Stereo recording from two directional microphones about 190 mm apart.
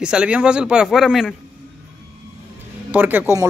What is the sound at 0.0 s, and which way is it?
Speech, 5° right (ahead or behind).